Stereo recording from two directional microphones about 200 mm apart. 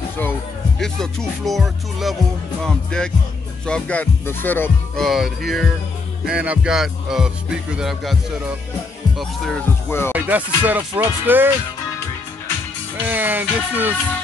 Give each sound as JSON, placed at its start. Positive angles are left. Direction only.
{"t": 0.2, "sound": "speech", "side_deg": 5}
{"t": 2.6, "sound": "music", "side_deg": 5}
{"t": 9.8, "sound": "speech", "side_deg": 10}
{"t": 10.1, "sound": "speech", "side_deg": -10}
{"t": 13.0, "sound": "speech", "side_deg": -10}